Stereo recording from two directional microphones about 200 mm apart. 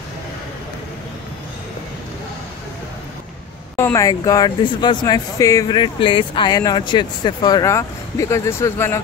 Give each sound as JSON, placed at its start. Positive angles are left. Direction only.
{"t": 3.7, "sound": "speech", "side_deg": 15}